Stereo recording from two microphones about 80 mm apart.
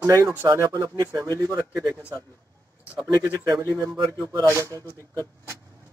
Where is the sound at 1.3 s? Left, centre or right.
Right.